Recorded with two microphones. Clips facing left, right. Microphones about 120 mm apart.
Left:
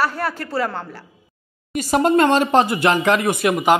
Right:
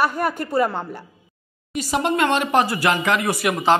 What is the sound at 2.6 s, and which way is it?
Speech, 20° left (ahead or behind).